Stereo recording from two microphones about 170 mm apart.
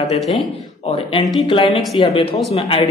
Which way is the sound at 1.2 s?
30° left (ahead or behind).